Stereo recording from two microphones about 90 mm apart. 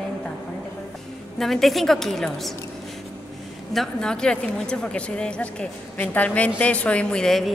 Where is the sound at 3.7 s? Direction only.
5° left (ahead or behind).